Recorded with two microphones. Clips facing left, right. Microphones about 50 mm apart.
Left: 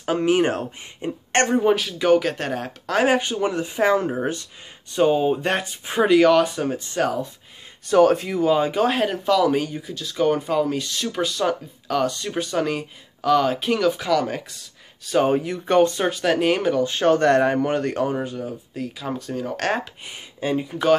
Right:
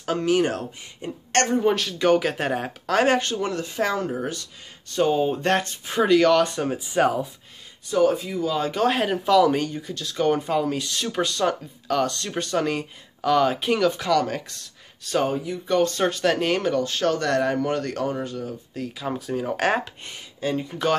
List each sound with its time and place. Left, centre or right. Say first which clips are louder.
0.0 s speech: left 2 dB; centre
2.9 s speech: left 1 dB; centre
3.2 s speech: left 2 dB; centre
4.9 s speech: left 3 dB; centre
7.9 s speech: left 4 dB; left
8.5 s speech: left 6 dB; centre
8.8 s speech: left 1 dB; centre
16.9 s speech: left 5 dB; left; by 18.9 s centre
18.9 s speech: right 2 dB; centre
20.1 s speech: left 3 dB; centre
20.6 s speech: left 6 dB; centre